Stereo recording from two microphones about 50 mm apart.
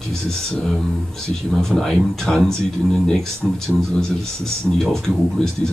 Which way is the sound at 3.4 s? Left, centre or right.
Centre.